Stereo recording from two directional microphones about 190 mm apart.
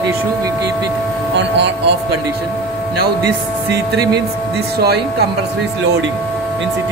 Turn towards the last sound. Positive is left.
turn(degrees=-55)  # may be behind; listen again after turning